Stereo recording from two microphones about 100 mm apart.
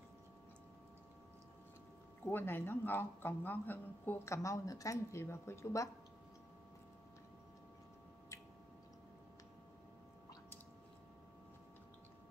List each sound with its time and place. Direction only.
2.2 s speech: 20° left (ahead or behind)